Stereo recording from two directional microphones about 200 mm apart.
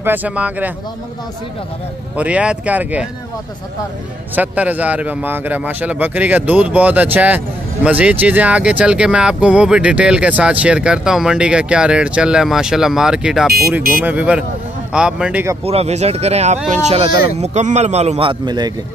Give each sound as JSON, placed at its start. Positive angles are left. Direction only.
{"t": 0.0, "sound": "speech", "side_deg": -10}
{"t": 2.1, "sound": "speech", "side_deg": -5}
{"t": 4.4, "sound": "a man's voice", "side_deg": -10}
{"t": 15.6, "sound": "speech", "side_deg": -30}